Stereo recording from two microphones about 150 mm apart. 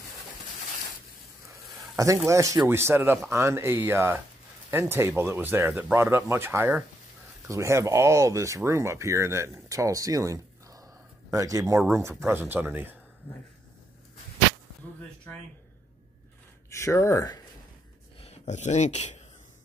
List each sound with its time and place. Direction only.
1.5 s speech: 20° right (ahead or behind)
16.7 s speech: 20° left (ahead or behind)
18.2 s speech: 50° left (ahead or behind)